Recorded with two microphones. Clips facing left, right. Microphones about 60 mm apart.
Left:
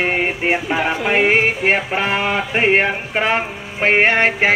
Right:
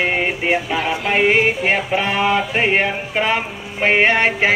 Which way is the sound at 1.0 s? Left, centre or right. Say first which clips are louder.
Right 1 dB; centre.